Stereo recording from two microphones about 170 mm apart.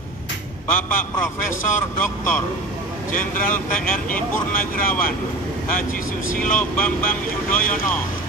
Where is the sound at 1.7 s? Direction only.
10° left (ahead or behind).